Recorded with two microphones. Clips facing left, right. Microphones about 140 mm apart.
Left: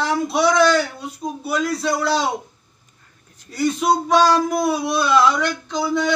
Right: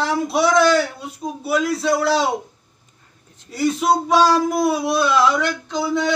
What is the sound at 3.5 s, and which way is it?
Speech, 5° right (ahead or behind).